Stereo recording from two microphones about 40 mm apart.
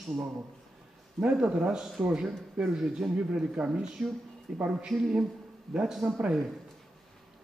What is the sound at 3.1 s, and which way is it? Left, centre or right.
Speech, right.